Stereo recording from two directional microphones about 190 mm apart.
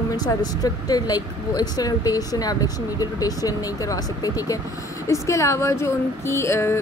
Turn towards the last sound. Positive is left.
turn(degrees=15)  # may be behind; listen again after turning